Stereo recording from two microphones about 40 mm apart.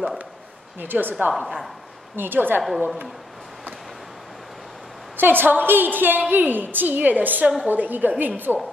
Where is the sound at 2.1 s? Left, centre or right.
Right.